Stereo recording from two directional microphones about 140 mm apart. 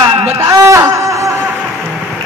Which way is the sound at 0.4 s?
20° right (ahead or behind).